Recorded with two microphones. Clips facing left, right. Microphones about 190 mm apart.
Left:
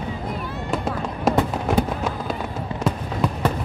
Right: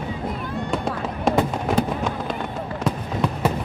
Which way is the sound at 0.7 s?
Centre (ahead or behind).